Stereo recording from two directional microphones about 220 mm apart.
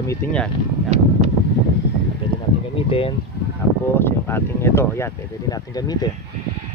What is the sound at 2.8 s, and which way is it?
Speech, 25° left (ahead or behind).